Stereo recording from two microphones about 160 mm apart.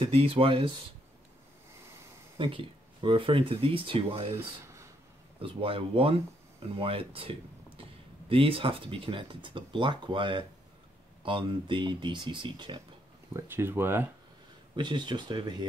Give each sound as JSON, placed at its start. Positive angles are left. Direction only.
{"t": 0.0, "sound": "speech", "side_deg": -35}
{"t": 2.3, "sound": "speech", "side_deg": -30}
{"t": 5.4, "sound": "speech", "side_deg": -35}
{"t": 13.3, "sound": "speech", "side_deg": -15}
{"t": 14.8, "sound": "speech", "side_deg": -30}